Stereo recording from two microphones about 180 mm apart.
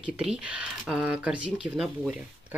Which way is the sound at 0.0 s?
5° right (ahead or behind).